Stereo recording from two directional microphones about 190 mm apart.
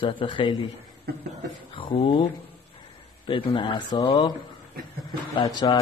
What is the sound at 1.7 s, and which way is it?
Speech, 25° left (ahead or behind).